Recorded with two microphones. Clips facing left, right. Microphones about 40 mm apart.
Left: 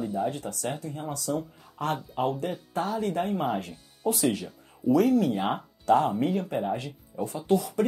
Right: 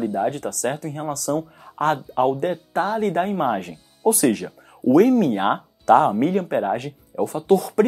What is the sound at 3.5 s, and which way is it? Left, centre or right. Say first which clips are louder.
Speech: right 5 dB; right.